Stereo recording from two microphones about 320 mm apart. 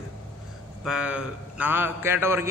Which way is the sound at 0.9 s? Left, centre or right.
Centre.